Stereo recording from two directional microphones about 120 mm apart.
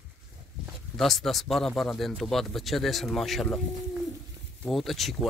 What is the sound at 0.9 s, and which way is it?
Speech, centre (ahead or behind).